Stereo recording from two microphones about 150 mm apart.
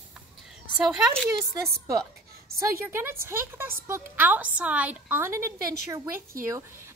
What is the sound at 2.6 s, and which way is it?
A woman's voice, 15° right (ahead or behind).